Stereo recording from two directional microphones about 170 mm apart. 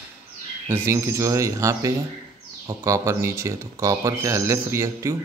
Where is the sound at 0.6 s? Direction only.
15° right (ahead or behind).